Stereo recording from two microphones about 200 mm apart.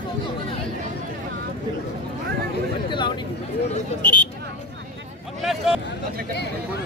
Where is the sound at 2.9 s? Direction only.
25° left (ahead or behind).